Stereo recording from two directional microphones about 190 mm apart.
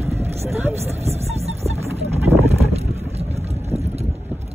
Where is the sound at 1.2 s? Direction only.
35° right (ahead or behind).